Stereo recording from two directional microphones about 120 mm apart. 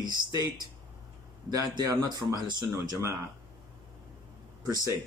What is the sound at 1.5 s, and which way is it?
Speech, 30° right (ahead or behind).